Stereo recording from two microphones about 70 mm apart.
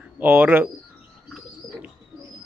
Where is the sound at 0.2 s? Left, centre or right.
Right.